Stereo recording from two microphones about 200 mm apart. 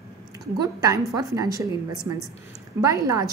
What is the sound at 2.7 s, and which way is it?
Speech, 15° right (ahead or behind).